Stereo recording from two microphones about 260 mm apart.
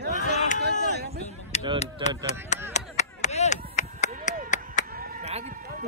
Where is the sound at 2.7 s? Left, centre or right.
Left.